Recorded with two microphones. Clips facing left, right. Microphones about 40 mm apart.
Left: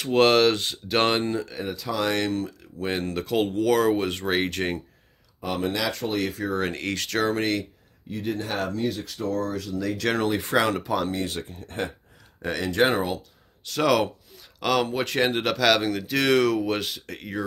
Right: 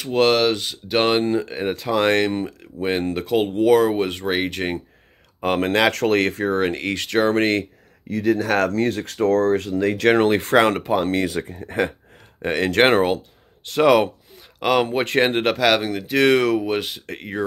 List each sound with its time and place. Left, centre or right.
0.0 s speech: centre
1.3 s speech: right
2.9 s speech: centre
5.4 s speech: right
7.3 s speech: right
8.1 s speech: right
10.2 s speech: right
11.4 s speech: right
12.4 s speech: right
12.6 s speech: right
13.7 s speech: right
15.6 s speech: centre
17.0 s speech: right